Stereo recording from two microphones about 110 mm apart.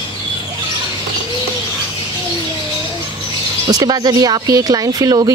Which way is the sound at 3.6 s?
35° right (ahead or behind).